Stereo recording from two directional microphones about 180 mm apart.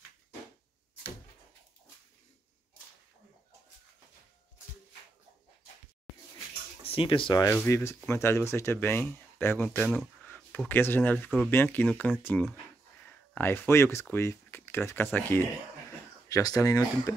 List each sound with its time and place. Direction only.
6.8 s speech: 30° left (ahead or behind)
7.4 s speech: 15° left (ahead or behind)